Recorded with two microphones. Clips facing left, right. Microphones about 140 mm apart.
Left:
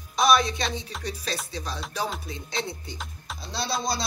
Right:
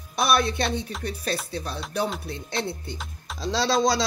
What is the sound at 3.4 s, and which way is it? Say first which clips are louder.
Music: right 8 dB; 90° right.